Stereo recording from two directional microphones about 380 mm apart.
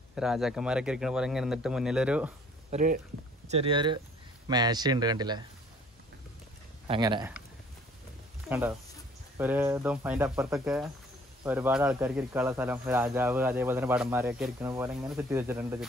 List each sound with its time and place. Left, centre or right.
0.1 s speech: centre
2.7 s speech: right
6.9 s speech: centre
8.5 s speech: centre